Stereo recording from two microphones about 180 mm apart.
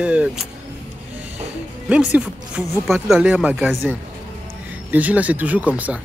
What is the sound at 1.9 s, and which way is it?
Speech, 5° right (ahead or behind).